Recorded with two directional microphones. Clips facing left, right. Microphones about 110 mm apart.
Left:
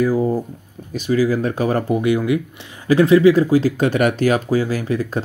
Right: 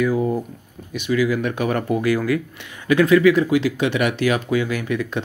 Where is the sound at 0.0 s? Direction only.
35° left (ahead or behind).